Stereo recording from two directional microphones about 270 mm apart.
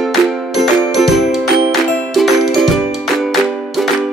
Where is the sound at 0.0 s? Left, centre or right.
Centre.